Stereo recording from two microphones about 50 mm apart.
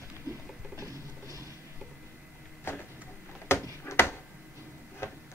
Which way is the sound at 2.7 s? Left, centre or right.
Left.